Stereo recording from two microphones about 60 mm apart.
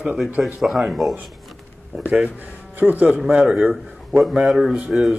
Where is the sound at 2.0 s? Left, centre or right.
Right.